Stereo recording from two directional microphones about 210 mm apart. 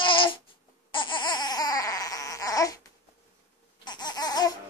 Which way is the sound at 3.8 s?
20° left (ahead or behind).